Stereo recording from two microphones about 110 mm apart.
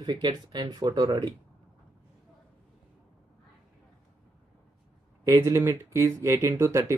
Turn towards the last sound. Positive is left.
turn(degrees=-25)  # may be behind; listen again after turning